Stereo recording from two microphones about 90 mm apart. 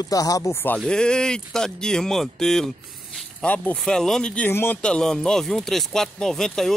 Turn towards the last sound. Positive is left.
turn(degrees=5)  # may be behind; listen again after turning